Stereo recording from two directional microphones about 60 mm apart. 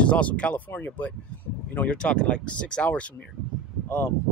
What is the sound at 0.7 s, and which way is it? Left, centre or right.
Speech, left.